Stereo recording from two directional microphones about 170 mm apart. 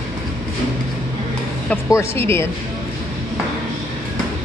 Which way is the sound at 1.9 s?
15° left (ahead or behind).